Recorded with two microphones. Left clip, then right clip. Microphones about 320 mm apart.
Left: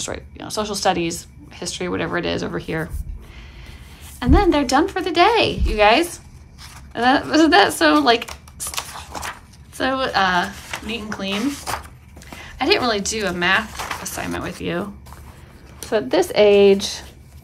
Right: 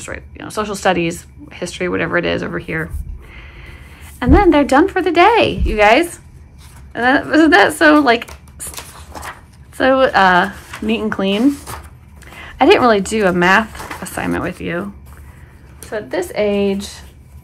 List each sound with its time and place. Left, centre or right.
0.0 s speech: centre
4.2 s speech: centre
15.9 s speech: centre